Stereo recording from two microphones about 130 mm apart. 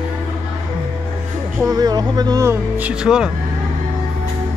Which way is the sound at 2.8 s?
10° right (ahead or behind).